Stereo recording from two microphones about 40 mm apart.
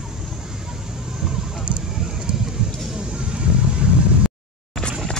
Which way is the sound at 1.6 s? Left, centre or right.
Right.